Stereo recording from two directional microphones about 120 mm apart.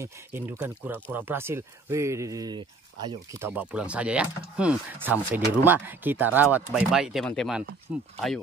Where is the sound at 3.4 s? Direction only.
20° right (ahead or behind).